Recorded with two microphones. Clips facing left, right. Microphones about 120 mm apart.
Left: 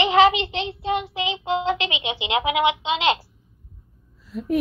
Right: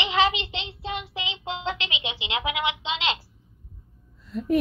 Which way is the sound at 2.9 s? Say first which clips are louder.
Left 7 dB; 50° left (ahead or behind).